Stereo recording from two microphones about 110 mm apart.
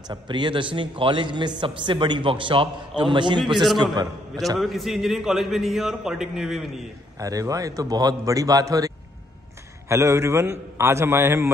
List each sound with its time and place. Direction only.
0.1 s a man's voice: 45° right (ahead or behind)
4.6 s a man's voice: centre (ahead or behind)
7.2 s a man's voice: 30° right (ahead or behind)